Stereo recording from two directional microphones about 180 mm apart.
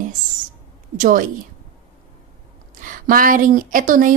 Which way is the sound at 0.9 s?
50° right (ahead or behind).